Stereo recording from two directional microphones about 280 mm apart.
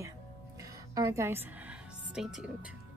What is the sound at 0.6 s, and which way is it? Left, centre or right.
Music, centre.